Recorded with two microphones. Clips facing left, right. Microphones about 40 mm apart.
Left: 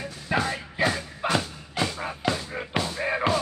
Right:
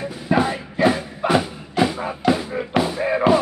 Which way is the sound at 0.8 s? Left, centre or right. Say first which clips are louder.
Right 8 dB; centre.